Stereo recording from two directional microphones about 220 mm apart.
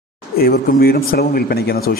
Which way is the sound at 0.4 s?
45° left (ahead or behind).